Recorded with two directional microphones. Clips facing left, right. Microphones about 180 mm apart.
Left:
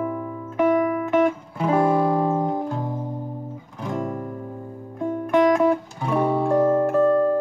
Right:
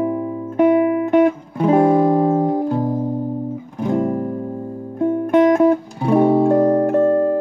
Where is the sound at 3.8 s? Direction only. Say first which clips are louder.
Right 8 dB; 35° right (ahead or behind).